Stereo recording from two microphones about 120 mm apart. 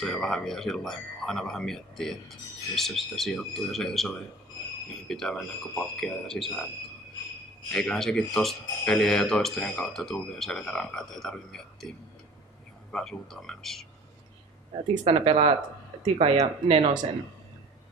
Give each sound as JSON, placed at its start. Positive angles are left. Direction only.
{"t": 0.0, "sound": "speech", "side_deg": 5}
{"t": 7.7, "sound": "speech", "side_deg": 5}
{"t": 12.9, "sound": "speech", "side_deg": 5}
{"t": 15.0, "sound": "speech", "side_deg": -55}